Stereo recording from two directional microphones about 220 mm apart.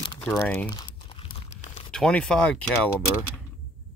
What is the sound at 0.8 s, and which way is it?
Crunch, 25° left (ahead or behind).